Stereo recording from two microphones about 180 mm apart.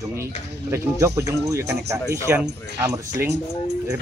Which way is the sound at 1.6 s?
65° right (ahead or behind).